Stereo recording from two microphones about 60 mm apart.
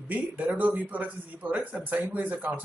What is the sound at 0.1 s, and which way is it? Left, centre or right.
Speech, right.